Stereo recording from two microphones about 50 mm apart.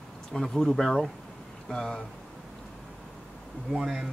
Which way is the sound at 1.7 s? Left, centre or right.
Centre.